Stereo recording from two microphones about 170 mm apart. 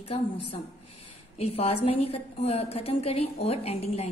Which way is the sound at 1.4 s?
35° left (ahead or behind).